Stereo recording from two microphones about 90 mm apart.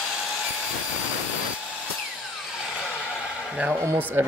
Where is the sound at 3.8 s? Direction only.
30° right (ahead or behind).